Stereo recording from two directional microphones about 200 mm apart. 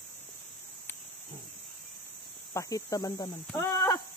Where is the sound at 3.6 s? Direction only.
20° left (ahead or behind).